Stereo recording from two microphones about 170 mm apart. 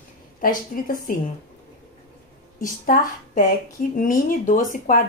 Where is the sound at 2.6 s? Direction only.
55° left (ahead or behind).